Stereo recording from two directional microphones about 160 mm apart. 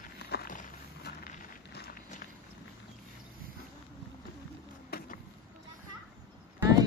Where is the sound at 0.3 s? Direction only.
75° left (ahead or behind).